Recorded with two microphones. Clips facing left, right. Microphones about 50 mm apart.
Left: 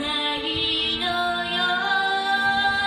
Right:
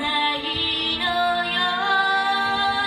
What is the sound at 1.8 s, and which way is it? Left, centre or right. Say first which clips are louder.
Music: right 3 dB; right.